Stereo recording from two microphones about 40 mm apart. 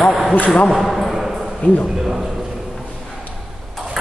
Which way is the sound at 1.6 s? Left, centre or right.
Left.